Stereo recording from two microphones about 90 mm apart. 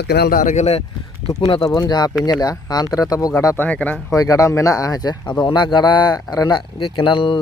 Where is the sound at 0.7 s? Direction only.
90° left.